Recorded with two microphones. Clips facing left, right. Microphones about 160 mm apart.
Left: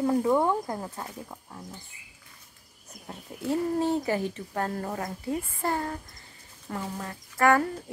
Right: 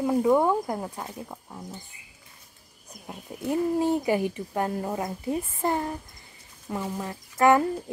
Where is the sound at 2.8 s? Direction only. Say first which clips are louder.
Right 2 dB; 15° right (ahead or behind).